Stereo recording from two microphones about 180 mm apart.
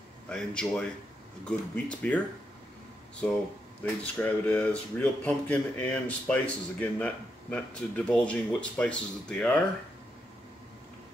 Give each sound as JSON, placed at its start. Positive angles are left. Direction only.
{"t": 0.3, "sound": "speech", "side_deg": 5}
{"t": 3.8, "sound": "speech", "side_deg": 10}